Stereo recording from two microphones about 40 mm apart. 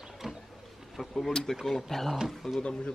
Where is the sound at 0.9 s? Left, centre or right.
Centre.